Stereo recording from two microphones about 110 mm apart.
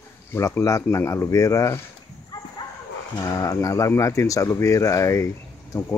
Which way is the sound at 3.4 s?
30° left (ahead or behind).